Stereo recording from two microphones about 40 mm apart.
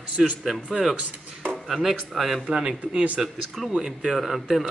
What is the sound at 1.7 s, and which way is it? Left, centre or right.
A man's voice, centre.